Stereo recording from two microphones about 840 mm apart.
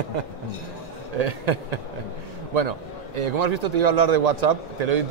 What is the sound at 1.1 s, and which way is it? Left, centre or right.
A man's voice, right.